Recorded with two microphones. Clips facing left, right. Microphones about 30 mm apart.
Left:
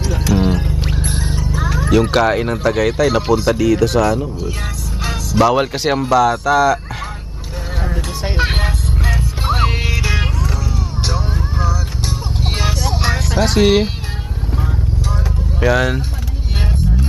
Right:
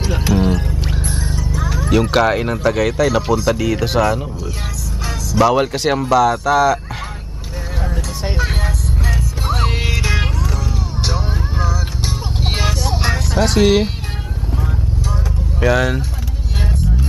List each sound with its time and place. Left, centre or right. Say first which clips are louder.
0.0 s music: even; centre
0.4 s music: even; centre
1.0 s music: left 1 dB; left
1.9 s speech: left 1 dB; centre
3.5 s speech: left 3 dB; centre
5.4 s speech: even; centre
7.8 s a sound: left 2 dB; centre
8.4 s vehicle: left 5 dB; left
9.5 s music: left 3 dB; centre
9.8 s music: even; centre
11.1 s vehicle: even; centre
12.4 s music: even; centre
15.6 s speech: even; centre